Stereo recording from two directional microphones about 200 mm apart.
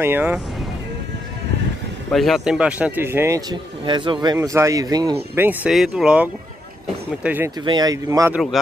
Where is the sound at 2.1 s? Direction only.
Centre (ahead or behind); by 5.2 s 20° right (ahead or behind).